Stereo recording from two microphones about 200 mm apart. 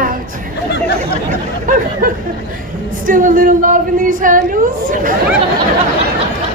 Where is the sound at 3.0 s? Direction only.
40° right (ahead or behind).